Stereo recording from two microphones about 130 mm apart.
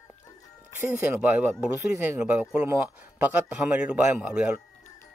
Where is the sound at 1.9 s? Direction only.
20° right (ahead or behind).